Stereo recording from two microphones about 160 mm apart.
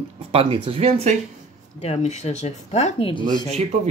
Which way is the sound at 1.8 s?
45° left (ahead or behind).